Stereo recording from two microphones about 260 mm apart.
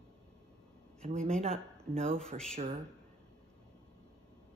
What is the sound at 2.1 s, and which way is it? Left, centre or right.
Speech, centre.